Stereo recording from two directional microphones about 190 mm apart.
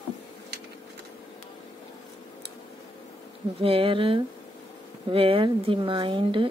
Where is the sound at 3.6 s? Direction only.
30° right (ahead or behind).